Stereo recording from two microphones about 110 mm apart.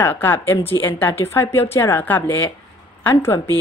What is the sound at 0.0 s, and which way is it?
A woman's voice, 20° left (ahead or behind).